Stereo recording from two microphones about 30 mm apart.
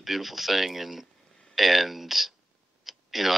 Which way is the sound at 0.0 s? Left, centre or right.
Centre.